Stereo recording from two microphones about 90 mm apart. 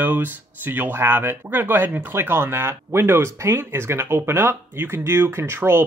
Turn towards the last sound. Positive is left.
turn(degrees=-25)  # may be behind; listen again after turning